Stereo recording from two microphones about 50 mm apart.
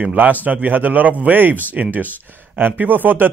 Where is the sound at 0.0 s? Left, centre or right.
Right.